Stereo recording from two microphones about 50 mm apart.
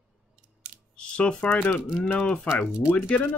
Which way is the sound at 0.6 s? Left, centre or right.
Right.